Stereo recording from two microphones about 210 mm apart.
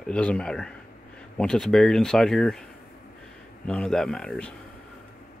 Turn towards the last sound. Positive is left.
turn(degrees=5)  # may be behind; listen again after turning